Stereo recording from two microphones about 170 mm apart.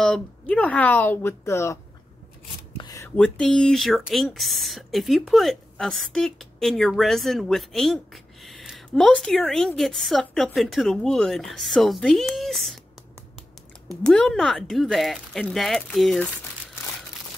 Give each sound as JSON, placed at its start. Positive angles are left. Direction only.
{"t": 0.0, "sound": "speech", "side_deg": 5}
{"t": 2.8, "sound": "a sound", "side_deg": 20}
{"t": 3.2, "sound": "speech", "side_deg": 5}
{"t": 13.8, "sound": "speech", "side_deg": 5}